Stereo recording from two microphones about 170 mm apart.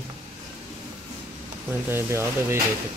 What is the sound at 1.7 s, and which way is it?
Speech, 15° right (ahead or behind).